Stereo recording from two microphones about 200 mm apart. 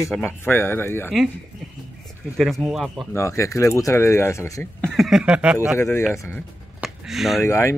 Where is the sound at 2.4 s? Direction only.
Centre (ahead or behind).